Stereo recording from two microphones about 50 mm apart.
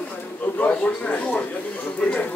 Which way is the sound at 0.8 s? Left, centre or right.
Left.